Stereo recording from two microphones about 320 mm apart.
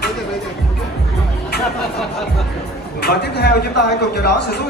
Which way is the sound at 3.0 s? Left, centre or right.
Left.